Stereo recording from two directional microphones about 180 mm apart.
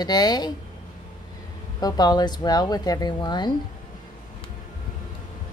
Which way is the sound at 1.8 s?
20° left (ahead or behind).